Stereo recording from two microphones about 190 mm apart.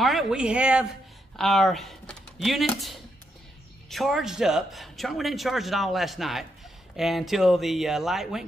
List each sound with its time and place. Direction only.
0.0 s speech: centre (ahead or behind)